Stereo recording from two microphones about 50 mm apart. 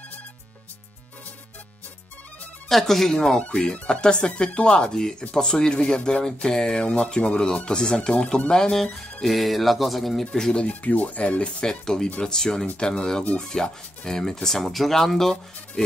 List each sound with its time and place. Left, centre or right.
2.7 s speech: centre
3.7 s speech: centre
4.3 s speech: left
9.2 s speech: centre
10.2 s speech: centre
10.6 s speech: left; by 15.8 s centre